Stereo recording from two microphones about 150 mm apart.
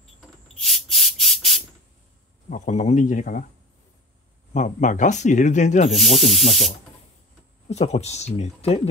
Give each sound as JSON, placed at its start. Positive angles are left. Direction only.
{"t": 0.6, "sound": "rub", "side_deg": 0}
{"t": 2.5, "sound": "speech", "side_deg": 50}
{"t": 4.6, "sound": "speech", "side_deg": 55}
{"t": 5.9, "sound": "speech", "side_deg": 0}
{"t": 7.6, "sound": "speech", "side_deg": 45}